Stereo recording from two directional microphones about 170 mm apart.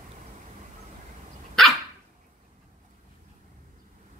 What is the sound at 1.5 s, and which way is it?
Dog, centre (ahead or behind).